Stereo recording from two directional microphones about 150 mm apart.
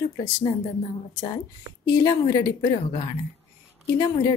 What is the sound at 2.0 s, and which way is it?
Speech, 25° left (ahead or behind).